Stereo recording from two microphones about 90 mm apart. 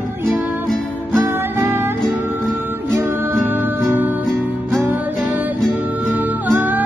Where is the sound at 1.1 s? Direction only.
30° right (ahead or behind).